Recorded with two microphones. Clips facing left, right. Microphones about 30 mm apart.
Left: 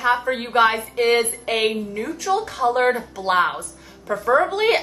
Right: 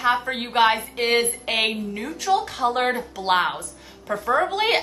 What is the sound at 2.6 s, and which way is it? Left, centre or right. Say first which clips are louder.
Speech: left 2 dB; centre.